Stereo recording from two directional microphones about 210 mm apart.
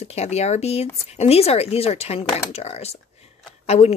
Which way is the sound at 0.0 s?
30° left (ahead or behind).